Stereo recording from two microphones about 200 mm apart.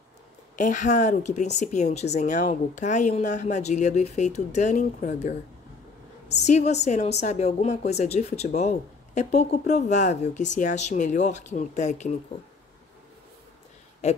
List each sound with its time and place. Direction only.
0.6 s a woman's voice: 40° left (ahead or behind)
6.3 s a woman's voice: 35° left (ahead or behind)
14.0 s speech: 35° left (ahead or behind)